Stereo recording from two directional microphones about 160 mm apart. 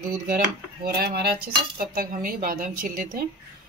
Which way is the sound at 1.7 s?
60° right (ahead or behind).